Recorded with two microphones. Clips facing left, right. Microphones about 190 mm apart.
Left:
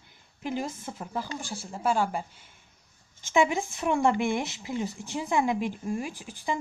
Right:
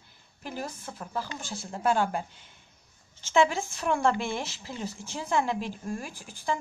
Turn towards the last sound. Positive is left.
turn(degrees=15)  # may be behind; listen again after turning